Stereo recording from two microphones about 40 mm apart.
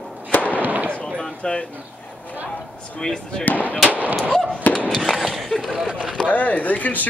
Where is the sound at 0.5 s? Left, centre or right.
Right.